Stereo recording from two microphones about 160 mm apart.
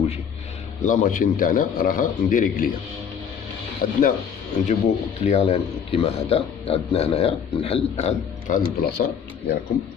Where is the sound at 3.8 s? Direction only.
65° left (ahead or behind).